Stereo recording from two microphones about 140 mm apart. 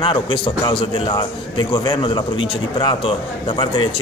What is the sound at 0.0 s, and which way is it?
A man's voice, 35° left (ahead or behind).